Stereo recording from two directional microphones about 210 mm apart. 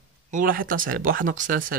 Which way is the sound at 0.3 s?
40° right (ahead or behind).